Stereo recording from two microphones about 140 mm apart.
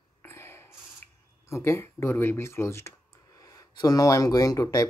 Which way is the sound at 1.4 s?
20° left (ahead or behind).